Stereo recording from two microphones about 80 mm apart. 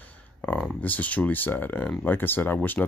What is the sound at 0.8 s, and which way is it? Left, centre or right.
Speech, left.